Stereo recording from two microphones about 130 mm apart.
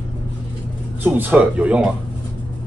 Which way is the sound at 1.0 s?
15° right (ahead or behind).